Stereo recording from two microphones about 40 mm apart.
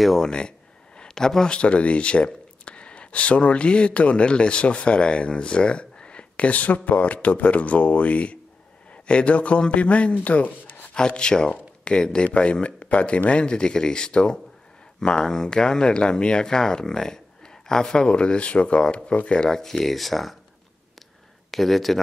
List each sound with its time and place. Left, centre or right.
0.2 s a man's voice: left
11.0 s speech: left
19.5 s speech: centre
21.5 s speech: centre